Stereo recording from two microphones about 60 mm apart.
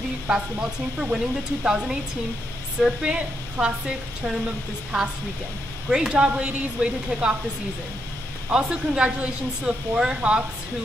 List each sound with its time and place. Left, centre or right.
0.3 s a woman's voice: centre
5.9 s a woman's voice: centre
8.5 s a woman's voice: centre